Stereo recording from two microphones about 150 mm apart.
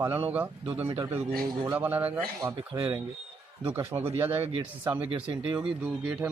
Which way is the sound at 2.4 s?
30° right (ahead or behind).